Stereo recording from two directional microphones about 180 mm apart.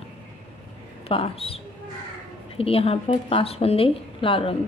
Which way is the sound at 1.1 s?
35° left (ahead or behind).